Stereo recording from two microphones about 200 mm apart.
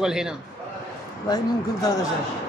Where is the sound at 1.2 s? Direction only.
20° left (ahead or behind).